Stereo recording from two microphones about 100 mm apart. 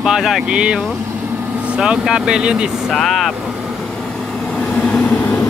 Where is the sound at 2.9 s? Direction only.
5° left (ahead or behind).